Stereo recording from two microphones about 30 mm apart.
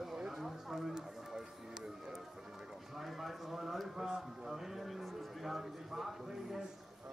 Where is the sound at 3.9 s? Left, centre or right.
Centre.